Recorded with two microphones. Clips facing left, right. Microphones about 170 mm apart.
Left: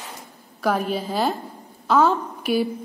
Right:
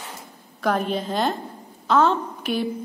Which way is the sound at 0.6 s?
5° left (ahead or behind).